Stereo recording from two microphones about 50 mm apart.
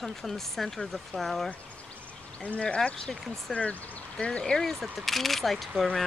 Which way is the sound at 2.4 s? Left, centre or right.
Left.